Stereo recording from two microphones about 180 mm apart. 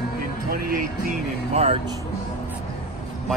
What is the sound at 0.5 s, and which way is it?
Music, 50° right (ahead or behind).